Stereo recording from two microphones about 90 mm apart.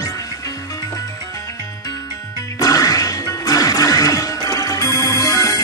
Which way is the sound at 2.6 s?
40° left (ahead or behind).